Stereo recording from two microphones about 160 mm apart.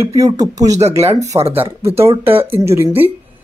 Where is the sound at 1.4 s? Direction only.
35° right (ahead or behind).